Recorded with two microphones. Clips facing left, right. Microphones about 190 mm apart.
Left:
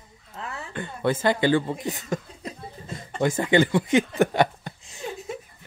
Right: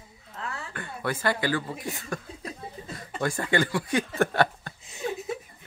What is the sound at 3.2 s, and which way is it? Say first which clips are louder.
Speech: left 6 dB; 20° left (ahead or behind).